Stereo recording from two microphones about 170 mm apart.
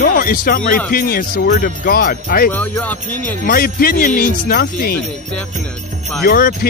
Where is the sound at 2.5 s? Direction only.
10° left (ahead or behind).